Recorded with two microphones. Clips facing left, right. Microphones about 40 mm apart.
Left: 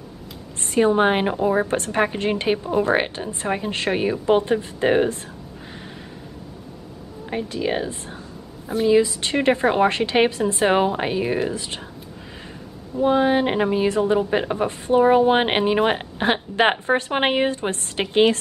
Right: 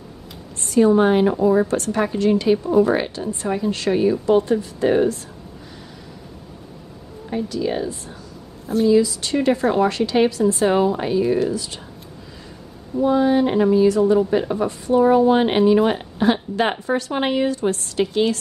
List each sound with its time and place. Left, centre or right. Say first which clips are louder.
0.7 s speech: right 3 dB; left
7.2 s speech: right 1 dB; left
13.0 s speech: right 1 dB; left